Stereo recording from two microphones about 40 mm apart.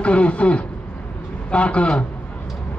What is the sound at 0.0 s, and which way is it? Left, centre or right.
A man's voice, left.